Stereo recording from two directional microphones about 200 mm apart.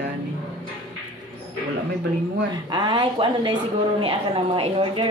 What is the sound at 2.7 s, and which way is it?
Speech, 20° right (ahead or behind).